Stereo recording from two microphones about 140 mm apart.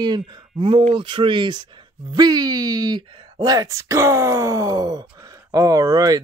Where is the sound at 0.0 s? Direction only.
30° right (ahead or behind).